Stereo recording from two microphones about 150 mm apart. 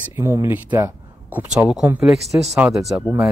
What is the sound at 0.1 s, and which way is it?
A man's voice, 15° right (ahead or behind).